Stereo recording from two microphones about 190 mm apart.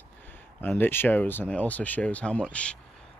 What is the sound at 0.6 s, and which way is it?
Speech, 10° left (ahead or behind).